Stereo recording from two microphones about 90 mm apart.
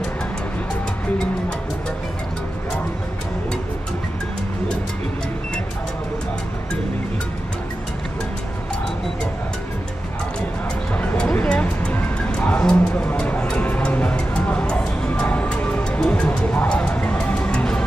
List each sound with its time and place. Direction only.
11.4 s music: 10° left (ahead or behind)